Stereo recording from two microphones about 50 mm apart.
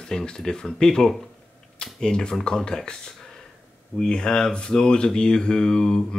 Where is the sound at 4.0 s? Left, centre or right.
Centre.